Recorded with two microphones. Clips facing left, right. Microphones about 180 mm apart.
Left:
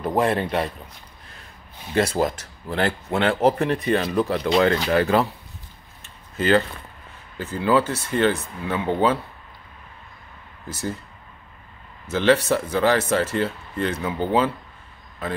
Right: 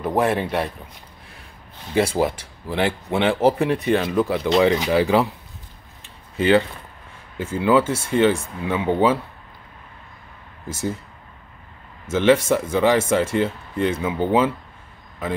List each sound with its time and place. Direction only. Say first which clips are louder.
0.0 s speech: right 1 dB; 10° right (ahead or behind)
2.0 s speech: right 1 dB; 10° right (ahead or behind)
4.6 s speech: right 2 dB; 15° right (ahead or behind)
6.3 s speech: right 2 dB; 15° right (ahead or behind)
12.1 s speech: right 2 dB; 15° right (ahead or behind)